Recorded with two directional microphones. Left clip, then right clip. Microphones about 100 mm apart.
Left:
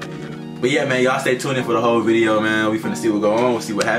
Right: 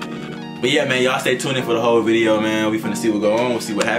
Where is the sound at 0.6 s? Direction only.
5° right (ahead or behind).